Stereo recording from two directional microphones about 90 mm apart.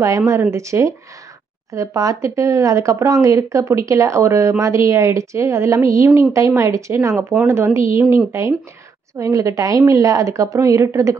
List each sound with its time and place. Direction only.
0.3 s speech: 30° right (ahead or behind)